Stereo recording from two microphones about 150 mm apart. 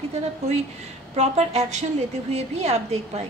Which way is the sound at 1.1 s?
45° right (ahead or behind).